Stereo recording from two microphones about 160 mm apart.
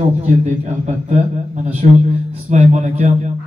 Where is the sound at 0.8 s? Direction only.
45° right (ahead or behind).